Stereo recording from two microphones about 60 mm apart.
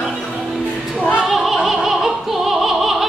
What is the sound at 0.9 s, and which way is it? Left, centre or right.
Music, left.